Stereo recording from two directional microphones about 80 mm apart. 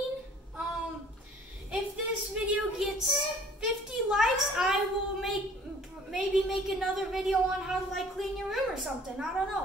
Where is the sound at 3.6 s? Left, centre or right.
Centre.